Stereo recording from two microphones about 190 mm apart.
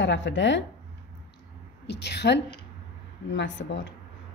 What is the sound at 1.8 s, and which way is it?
Speech, 65° left (ahead or behind).